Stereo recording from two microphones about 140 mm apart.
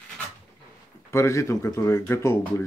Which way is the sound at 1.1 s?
20° left (ahead or behind).